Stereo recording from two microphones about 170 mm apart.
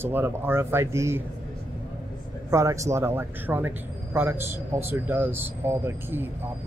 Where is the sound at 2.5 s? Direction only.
15° right (ahead or behind).